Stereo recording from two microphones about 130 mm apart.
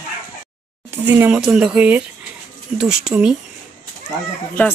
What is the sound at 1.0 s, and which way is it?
Speech, 15° right (ahead or behind).